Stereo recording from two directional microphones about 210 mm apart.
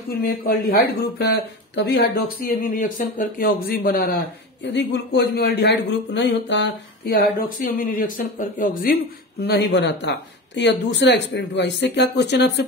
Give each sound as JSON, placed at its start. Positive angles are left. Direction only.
{"t": 0.1, "sound": "speech", "side_deg": 45}
{"t": 9.8, "sound": "speech", "side_deg": 60}